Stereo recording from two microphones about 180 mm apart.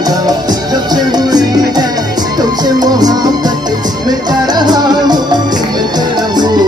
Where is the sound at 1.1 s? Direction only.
20° right (ahead or behind).